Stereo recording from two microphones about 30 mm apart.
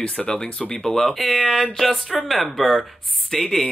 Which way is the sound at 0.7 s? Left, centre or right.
Centre.